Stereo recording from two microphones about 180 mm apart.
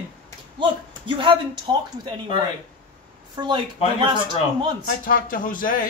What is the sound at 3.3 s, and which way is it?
Speech, 25° right (ahead or behind).